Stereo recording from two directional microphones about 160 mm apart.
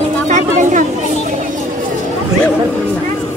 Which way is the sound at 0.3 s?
50° right (ahead or behind).